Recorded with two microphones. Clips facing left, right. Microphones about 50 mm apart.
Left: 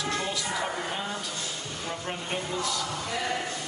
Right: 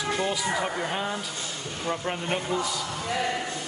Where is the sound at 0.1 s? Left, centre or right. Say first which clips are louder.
Right 3 dB; centre.